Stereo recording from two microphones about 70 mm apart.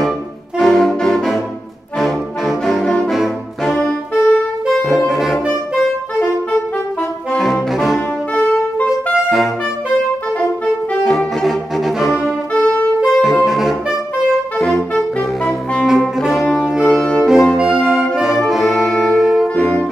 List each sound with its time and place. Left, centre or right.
0.6 s brass instrument: centre
4.8 s brass instrument: centre
7.7 s brass instrument: centre
8.4 s music: left
11.1 s cello: centre
12.5 s saxophone: left
13.0 s saxophone: centre
15.0 s music: centre
16.2 s brass instrument: centre
16.5 s music: centre
17.3 s brass instrument: centre
17.6 s brass instrument: centre
18.5 s music: centre